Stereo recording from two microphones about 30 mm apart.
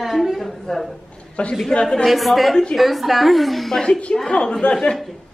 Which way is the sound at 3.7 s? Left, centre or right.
Centre.